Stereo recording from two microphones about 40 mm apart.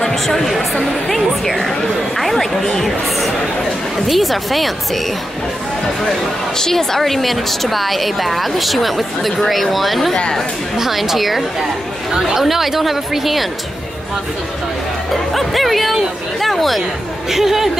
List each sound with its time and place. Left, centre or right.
0.0 s speech: centre
1.0 s a sound: centre
4.1 s a woman's voice: centre
6.6 s a woman's voice: centre
15.0 s speech: centre
16.3 s chatter: centre
17.3 s speech: centre